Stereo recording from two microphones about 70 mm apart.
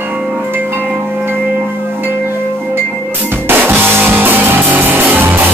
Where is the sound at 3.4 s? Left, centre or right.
Right.